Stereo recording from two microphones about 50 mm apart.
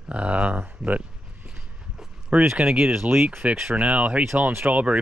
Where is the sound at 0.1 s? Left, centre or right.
Right.